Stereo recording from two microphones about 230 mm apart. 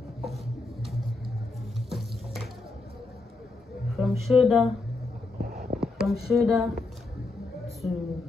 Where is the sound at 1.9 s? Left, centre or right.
Centre.